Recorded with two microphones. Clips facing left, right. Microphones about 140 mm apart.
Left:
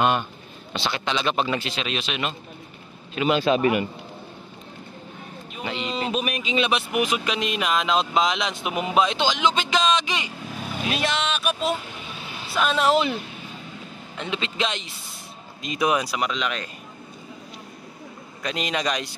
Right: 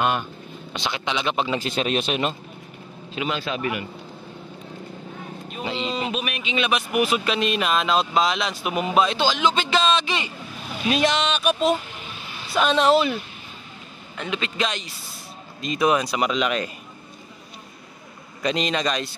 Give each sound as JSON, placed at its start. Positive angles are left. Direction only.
{"t": 0.7, "sound": "speech", "side_deg": -15}
{"t": 1.6, "sound": "a man's voice", "side_deg": -45}
{"t": 3.3, "sound": "speech", "side_deg": 20}
{"t": 5.7, "sound": "a sound", "side_deg": -25}
{"t": 6.1, "sound": "speech", "side_deg": 40}
{"t": 7.0, "sound": "speech", "side_deg": 15}
{"t": 10.9, "sound": "speech", "side_deg": 0}
{"t": 14.1, "sound": "speech", "side_deg": 25}
{"t": 16.2, "sound": "speech", "side_deg": -5}
{"t": 18.4, "sound": "speech", "side_deg": 5}